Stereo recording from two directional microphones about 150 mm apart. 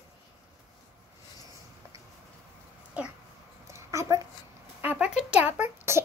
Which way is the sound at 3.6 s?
20° right (ahead or behind).